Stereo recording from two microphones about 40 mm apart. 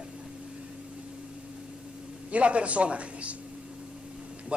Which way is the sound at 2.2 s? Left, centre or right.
Right.